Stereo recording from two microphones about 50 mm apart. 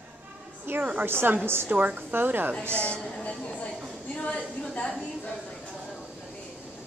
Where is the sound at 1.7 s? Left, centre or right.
Right.